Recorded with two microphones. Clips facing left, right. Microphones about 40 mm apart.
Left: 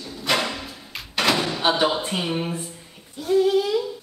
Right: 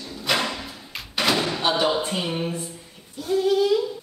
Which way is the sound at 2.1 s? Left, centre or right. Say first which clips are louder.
Left 1 dB; centre.